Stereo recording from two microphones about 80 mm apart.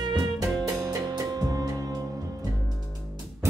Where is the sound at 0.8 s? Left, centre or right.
Right.